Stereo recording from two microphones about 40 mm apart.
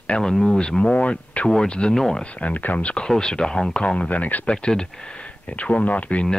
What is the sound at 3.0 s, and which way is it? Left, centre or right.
Speech, centre.